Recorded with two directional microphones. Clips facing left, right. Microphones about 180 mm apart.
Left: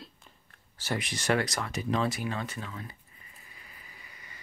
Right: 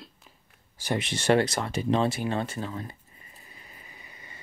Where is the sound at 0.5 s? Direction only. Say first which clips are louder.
Right 4 dB; 15° right (ahead or behind).